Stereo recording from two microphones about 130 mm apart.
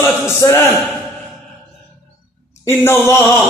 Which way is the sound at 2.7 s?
20° left (ahead or behind).